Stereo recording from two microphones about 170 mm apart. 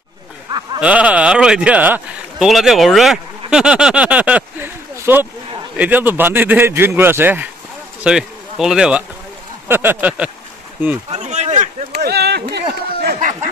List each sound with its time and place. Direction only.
0.7 s a man's voice: 5° right (ahead or behind)
11.1 s speech: 40° right (ahead or behind)
11.9 s run: 70° right (ahead or behind)